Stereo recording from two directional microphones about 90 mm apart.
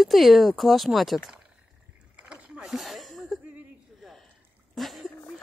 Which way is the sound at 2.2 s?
10° right (ahead or behind).